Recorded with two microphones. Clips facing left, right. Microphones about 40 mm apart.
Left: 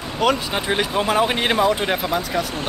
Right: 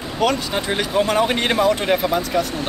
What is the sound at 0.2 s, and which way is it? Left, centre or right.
Speech, centre.